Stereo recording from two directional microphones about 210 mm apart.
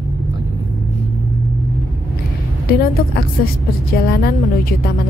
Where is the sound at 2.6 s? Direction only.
45° left (ahead or behind).